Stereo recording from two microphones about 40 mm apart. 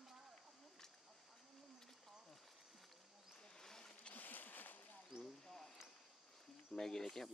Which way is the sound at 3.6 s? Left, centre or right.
Centre.